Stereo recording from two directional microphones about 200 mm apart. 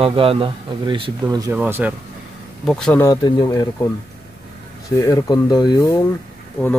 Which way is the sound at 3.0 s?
20° left (ahead or behind).